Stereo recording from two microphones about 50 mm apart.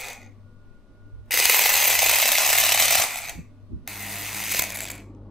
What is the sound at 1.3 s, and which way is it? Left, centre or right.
Ratchet, centre.